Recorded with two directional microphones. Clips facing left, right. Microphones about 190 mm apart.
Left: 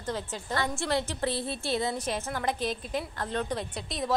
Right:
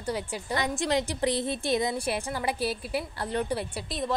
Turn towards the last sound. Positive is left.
turn(degrees=0)  # may be behind; listen again after turning